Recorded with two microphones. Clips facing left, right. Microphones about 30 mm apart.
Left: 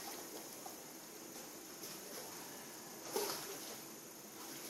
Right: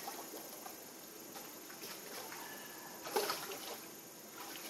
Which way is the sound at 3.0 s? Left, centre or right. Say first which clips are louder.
Right 4 dB; right.